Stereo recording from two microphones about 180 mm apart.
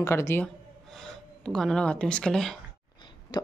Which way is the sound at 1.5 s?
5° left (ahead or behind).